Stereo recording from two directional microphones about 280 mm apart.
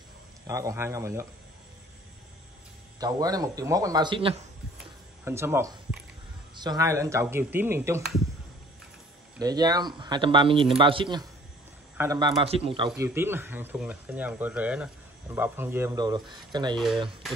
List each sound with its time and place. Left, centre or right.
0.5 s speech: centre
3.0 s speech: centre
9.4 s speech: centre
16.7 s speech: centre